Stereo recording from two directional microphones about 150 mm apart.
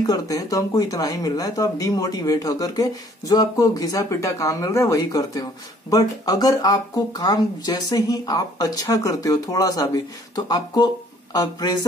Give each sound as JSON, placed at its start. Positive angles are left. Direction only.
{"t": 0.0, "sound": "speech", "side_deg": 25}